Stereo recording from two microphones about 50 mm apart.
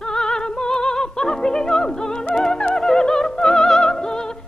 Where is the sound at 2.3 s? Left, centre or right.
Centre.